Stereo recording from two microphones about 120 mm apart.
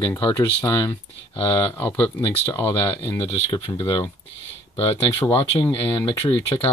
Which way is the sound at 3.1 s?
40° left (ahead or behind).